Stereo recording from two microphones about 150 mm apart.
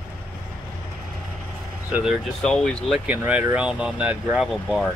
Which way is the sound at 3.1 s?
10° right (ahead or behind).